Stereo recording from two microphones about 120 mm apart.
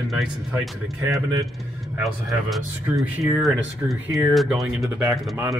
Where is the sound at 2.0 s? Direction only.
Centre (ahead or behind).